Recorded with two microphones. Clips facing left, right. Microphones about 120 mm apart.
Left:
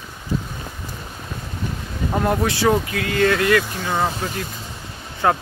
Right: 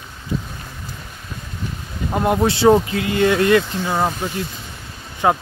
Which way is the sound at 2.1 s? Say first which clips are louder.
Right 3 dB; 20° right (ahead or behind).